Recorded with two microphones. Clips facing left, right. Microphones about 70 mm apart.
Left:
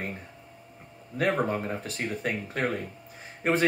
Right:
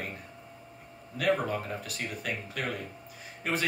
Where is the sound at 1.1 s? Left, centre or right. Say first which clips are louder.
Left 2 dB; left.